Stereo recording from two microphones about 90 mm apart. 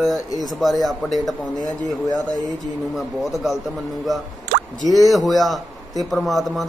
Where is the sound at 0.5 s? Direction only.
Centre (ahead or behind).